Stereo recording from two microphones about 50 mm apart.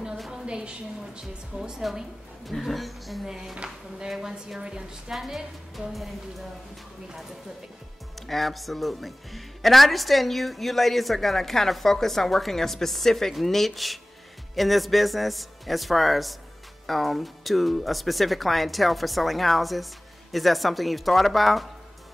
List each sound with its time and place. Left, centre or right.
0.3 s a sound: centre
1.6 s a woman's voice: centre
3.3 s a woman's voice: centre
5.1 s a woman's voice: centre
8.3 s a woman's voice: centre